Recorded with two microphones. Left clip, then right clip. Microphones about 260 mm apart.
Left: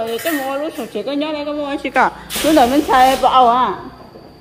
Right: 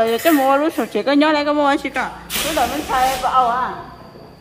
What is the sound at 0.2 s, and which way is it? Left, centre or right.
A woman's voice, right.